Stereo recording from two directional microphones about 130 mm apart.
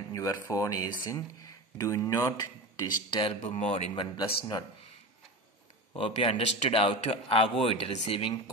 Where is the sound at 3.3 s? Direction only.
60° left (ahead or behind); by 4.6 s 35° left (ahead or behind).